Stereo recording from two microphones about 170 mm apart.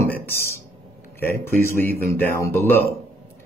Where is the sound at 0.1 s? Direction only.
15° left (ahead or behind).